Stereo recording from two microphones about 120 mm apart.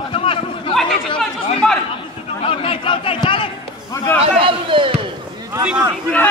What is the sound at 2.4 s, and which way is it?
A man's voice, 45° left (ahead or behind).